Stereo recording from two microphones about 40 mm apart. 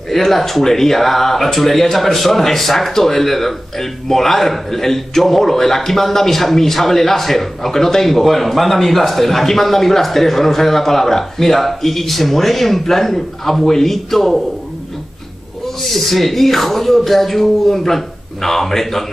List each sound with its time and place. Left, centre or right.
0.1 s speech: centre
15.9 s speech: centre